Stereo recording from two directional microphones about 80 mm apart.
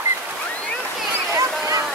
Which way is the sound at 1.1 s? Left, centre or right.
Right.